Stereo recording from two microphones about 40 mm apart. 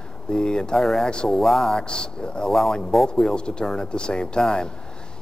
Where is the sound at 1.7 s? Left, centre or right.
Left.